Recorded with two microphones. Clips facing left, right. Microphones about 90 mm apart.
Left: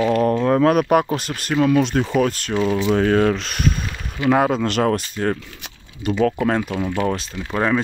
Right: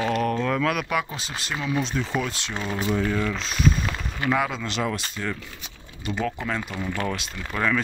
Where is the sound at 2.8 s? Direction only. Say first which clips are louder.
Left 7 dB; 65° left (ahead or behind).